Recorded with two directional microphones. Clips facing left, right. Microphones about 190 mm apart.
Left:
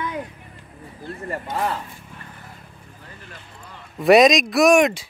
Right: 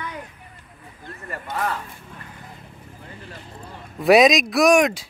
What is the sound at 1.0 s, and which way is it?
Speech, 30° left (ahead or behind).